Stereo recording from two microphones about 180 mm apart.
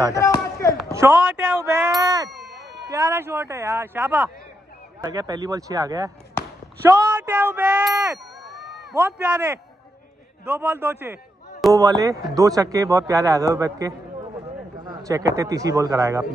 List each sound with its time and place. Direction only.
0.1 s chop: 15° left (ahead or behind)
0.9 s a man's voice: 10° right (ahead or behind)
2.3 s a sound: centre (ahead or behind)
2.9 s a man's voice: 15° right (ahead or behind); by 8.8 s centre (ahead or behind)
8.9 s a man's voice: 10° right (ahead or behind)